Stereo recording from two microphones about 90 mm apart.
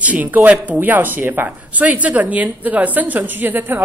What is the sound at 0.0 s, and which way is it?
Speech, 15° right (ahead or behind).